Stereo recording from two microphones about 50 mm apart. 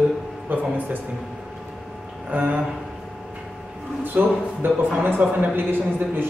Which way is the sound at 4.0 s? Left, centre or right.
Right.